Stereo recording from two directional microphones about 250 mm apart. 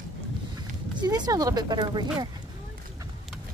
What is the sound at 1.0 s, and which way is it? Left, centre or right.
Speech, centre.